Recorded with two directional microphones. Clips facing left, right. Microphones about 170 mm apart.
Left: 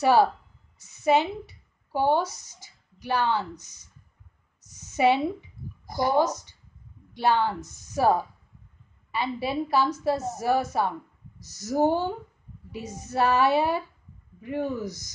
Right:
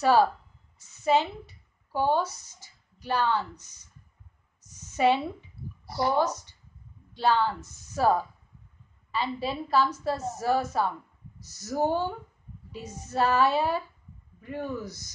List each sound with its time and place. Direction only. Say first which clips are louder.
0.0 s a woman's voice: left 1 dB; 15° left (ahead or behind)
4.9 s a woman's voice: left 2 dB; 15° left (ahead or behind)
5.6 s a sound: left 1 dB; 35° right (ahead or behind)
7.2 s a woman's voice: left 1 dB; 15° left (ahead or behind)